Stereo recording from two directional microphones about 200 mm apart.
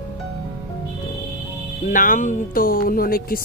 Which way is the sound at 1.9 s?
40° left (ahead or behind).